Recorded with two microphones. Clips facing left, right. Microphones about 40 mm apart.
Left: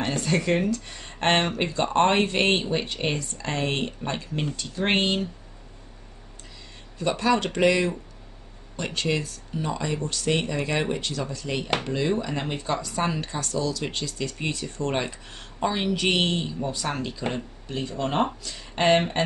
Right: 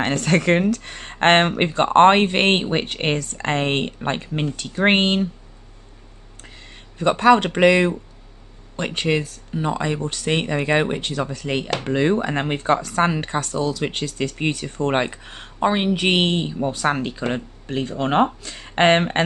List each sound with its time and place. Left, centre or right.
0.0 s speech: right
7.0 s speech: right